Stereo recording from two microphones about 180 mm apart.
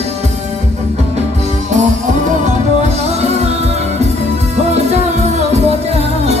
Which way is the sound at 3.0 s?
35° right (ahead or behind).